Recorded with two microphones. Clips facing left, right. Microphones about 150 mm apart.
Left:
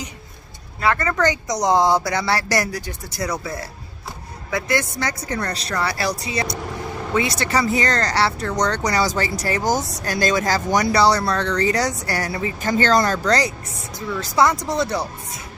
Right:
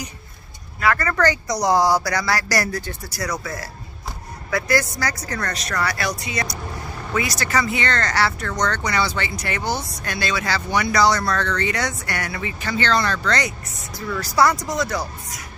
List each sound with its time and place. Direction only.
0.7 s speech: 25° left (ahead or behind)
3.3 s speech: 25° left (ahead or behind)
14.2 s speech: 20° left (ahead or behind)